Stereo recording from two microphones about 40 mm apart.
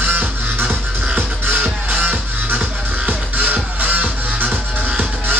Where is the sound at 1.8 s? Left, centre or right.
Right.